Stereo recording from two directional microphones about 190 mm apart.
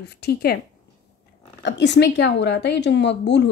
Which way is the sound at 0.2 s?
55° left (ahead or behind).